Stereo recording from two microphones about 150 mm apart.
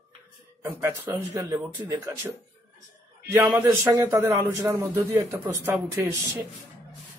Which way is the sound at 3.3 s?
15° right (ahead or behind).